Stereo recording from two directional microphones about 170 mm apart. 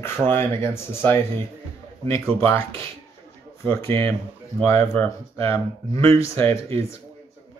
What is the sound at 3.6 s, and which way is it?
Speech, 15° left (ahead or behind).